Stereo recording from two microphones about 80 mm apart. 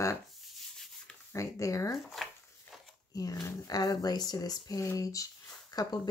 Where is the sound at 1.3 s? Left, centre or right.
Left.